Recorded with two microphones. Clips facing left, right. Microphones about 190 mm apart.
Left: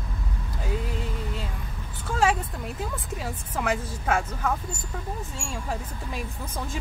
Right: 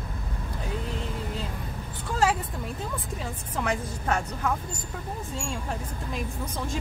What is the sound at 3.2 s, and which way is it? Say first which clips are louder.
A woman's voice: left 2 dB; 5° left (ahead or behind).